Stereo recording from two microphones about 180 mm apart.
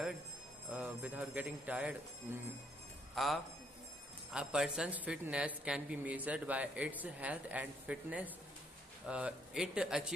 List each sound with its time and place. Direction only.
0.7 s a woman's voice: 10° right (ahead or behind)
3.2 s a woman's voice: centre (ahead or behind)